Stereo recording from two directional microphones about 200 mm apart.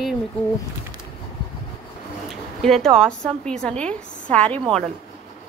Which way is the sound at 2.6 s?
Centre (ahead or behind).